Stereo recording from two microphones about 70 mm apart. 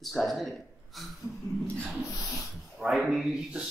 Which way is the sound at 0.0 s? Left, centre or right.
Centre.